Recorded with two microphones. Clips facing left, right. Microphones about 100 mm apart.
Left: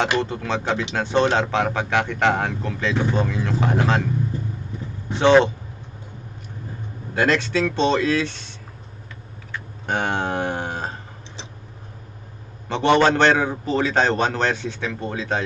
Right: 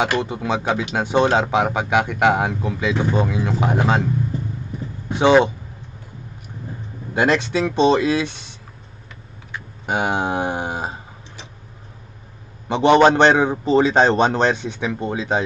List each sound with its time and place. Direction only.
0.2 s speech: 10° right (ahead or behind)
5.1 s speech: 10° right (ahead or behind)
7.2 s speech: 15° right (ahead or behind)
12.6 s a man's voice: 15° right (ahead or behind)